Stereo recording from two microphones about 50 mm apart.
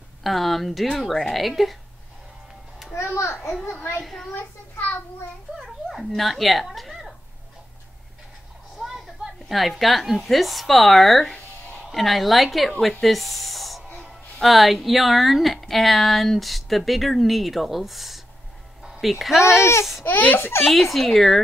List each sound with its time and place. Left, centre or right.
0.2 s speech: centre
2.9 s a child's voice: left
4.0 s speech: centre
5.9 s speech: centre
8.7 s a sound: centre
9.5 s speech: centre
18.8 s music: centre
19.4 s a child's voice: left
20.1 s a child's voice: left
20.6 s speech: centre